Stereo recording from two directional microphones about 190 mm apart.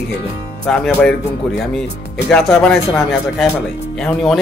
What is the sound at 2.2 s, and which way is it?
Speech, 5° left (ahead or behind).